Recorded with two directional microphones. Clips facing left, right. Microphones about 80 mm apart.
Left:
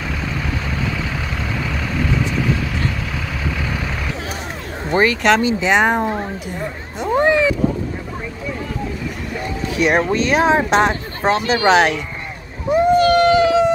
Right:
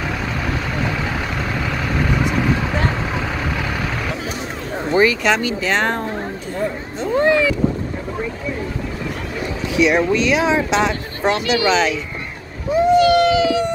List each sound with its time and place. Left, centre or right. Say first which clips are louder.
4.9 s speech: right 1 dB; left
5.4 s speech: left 4 dB; left
5.7 s speech: left 4 dB; centre
7.0 s a sound: left 1 dB; centre
9.8 s speech: right 1 dB; left
11.6 s speech: left 5 dB; left
12.7 s a sound: even; left